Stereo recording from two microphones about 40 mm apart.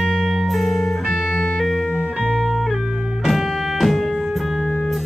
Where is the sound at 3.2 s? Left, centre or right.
Centre.